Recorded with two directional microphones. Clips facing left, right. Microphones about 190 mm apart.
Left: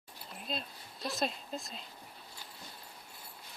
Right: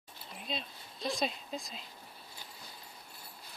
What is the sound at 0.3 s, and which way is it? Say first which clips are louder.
Speech: even; centre (ahead or behind).